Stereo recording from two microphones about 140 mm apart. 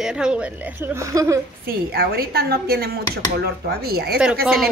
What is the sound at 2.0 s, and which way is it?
A woman's voice, 90° right.